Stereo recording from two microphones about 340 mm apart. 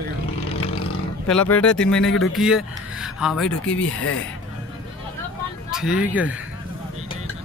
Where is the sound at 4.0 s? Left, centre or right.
Left.